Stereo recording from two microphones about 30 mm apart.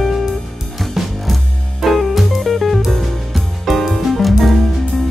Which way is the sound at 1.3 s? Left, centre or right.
Centre.